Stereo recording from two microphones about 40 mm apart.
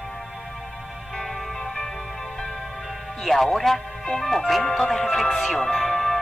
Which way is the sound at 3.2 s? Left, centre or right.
Centre.